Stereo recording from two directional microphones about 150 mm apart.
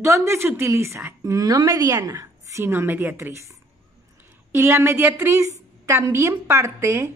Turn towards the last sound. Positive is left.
turn(degrees=-20)  # may be behind; listen again after turning